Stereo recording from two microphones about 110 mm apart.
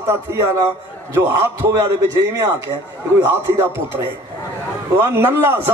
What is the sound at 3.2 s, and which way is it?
Speech, 25° right (ahead or behind).